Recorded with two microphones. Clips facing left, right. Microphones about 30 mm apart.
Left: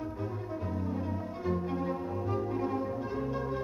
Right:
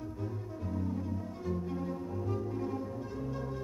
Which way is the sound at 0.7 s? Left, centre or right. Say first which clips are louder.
Right 1 dB; left.